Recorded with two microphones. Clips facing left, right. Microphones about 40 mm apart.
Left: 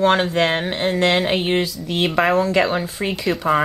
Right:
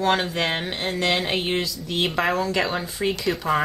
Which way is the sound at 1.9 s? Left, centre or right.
Centre.